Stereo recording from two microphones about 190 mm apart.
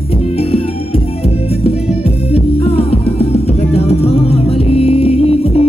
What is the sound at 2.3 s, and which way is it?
Music, 30° left (ahead or behind).